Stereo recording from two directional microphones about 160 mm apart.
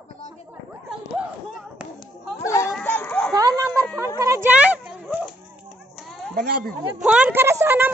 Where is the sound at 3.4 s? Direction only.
20° right (ahead or behind).